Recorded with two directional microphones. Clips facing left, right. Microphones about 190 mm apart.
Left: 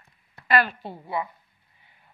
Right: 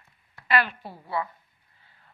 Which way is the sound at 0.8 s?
20° left (ahead or behind).